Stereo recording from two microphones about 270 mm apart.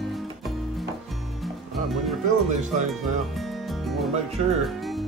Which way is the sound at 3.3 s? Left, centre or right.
Centre.